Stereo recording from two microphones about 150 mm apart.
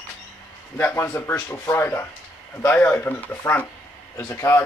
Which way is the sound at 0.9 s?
15° left (ahead or behind).